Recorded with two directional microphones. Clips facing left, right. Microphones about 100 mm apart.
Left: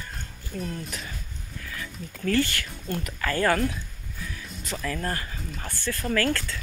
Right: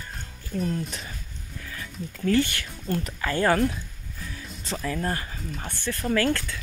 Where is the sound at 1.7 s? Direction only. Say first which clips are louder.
Right 3 dB; 20° right (ahead or behind).